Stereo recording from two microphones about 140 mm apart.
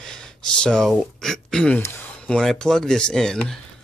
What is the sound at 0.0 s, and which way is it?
Speech, 5° left (ahead or behind).